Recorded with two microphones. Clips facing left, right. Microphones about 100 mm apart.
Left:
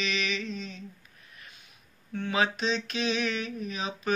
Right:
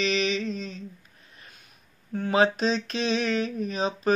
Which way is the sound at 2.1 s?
40° right (ahead or behind).